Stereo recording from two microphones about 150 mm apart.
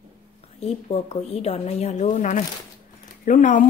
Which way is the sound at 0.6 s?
40° left (ahead or behind).